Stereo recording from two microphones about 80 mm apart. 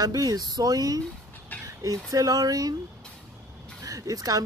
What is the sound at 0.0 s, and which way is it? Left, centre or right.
Speech, right.